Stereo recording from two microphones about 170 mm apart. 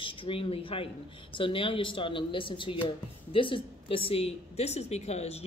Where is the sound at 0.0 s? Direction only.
30° left (ahead or behind).